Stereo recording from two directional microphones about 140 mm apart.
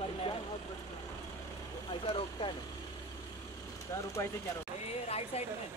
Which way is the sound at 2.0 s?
40° left (ahead or behind).